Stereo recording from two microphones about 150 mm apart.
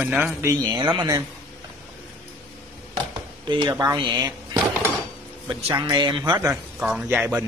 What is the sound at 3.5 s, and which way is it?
A man's voice, 30° right (ahead or behind).